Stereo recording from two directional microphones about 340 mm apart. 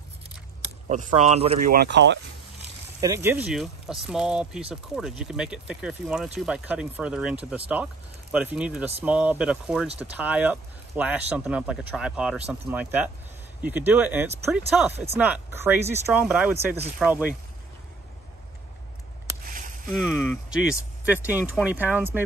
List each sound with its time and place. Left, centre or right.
0.8 s speech: right
3.0 s speech: centre
20.0 s speech: centre